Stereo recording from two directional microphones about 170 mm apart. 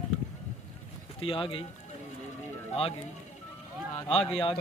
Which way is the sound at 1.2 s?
30° left (ahead or behind).